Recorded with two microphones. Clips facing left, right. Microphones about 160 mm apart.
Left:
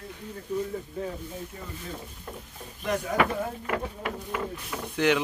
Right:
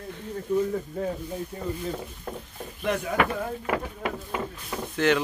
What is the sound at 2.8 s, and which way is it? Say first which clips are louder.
Speech: right 1 dB; 40° left (ahead or behind).